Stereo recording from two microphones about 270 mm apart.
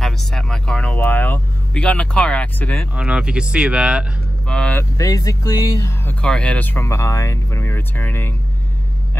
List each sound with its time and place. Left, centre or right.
0.0 s speech: centre